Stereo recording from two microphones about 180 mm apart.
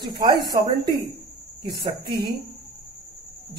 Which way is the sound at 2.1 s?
60° right (ahead or behind).